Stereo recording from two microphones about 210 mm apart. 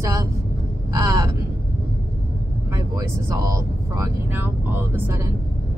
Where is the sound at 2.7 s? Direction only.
15° right (ahead or behind).